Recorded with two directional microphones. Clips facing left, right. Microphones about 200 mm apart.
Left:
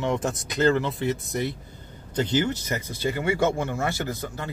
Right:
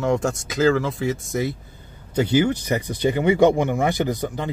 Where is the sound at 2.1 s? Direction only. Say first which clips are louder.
Right 5 dB; 10° right (ahead or behind).